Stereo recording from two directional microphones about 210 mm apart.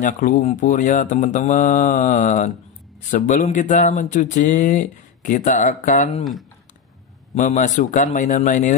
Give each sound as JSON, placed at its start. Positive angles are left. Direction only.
{"t": 0.0, "sound": "speech", "side_deg": 35}
{"t": 7.3, "sound": "speech", "side_deg": 35}